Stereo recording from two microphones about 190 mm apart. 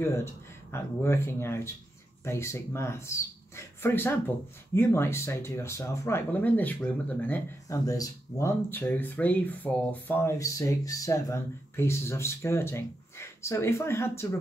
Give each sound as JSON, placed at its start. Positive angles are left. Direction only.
{"t": 0.0, "sound": "speech", "side_deg": 15}